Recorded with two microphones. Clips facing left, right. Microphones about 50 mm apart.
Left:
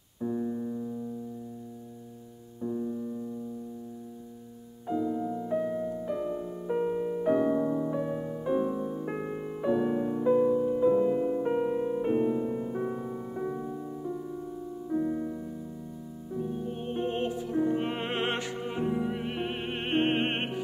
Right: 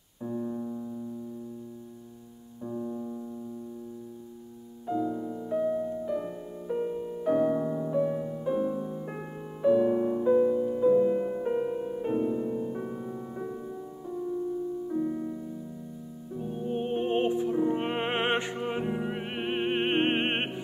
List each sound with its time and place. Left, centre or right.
0.2 s keyboard: centre
2.6 s keyboard: centre
4.8 s music: centre
5.4 s piano: centre
6.7 s music: left
7.2 s music: centre
11.1 s music: centre
11.4 s music: centre
14.9 s music: centre
16.3 s music: centre